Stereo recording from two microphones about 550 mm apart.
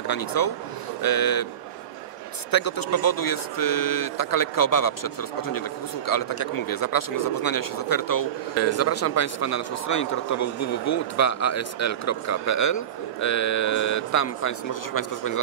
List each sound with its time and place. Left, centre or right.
0.0 s speech: left
2.5 s speech: left